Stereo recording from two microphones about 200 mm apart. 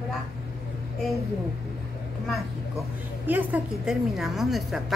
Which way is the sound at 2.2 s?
Centre (ahead or behind).